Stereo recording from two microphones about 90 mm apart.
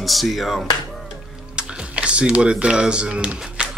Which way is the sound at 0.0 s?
Centre (ahead or behind).